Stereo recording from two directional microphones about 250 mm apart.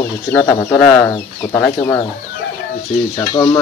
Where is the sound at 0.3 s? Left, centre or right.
Centre.